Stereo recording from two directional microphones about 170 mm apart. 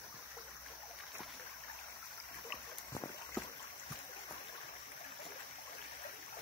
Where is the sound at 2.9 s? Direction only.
15° left (ahead or behind).